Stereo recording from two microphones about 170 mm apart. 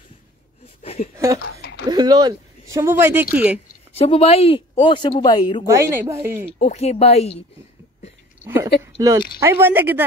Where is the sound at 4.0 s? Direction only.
35° left (ahead or behind).